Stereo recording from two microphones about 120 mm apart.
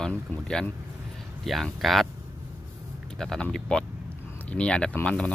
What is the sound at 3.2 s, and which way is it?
Speech, 5° left (ahead or behind).